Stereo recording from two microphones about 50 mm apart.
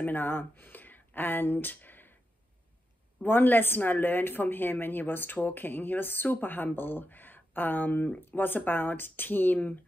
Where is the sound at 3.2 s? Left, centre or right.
Left.